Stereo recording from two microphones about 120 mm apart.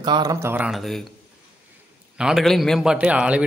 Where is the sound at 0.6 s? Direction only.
Centre (ahead or behind).